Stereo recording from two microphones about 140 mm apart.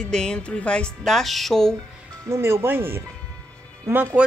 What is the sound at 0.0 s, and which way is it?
Speech, 5° left (ahead or behind).